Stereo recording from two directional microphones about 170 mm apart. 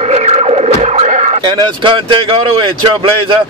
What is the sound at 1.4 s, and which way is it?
Speech, 25° right (ahead or behind).